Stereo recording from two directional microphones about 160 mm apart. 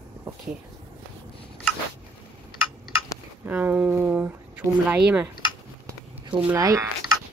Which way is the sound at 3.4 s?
10° right (ahead or behind).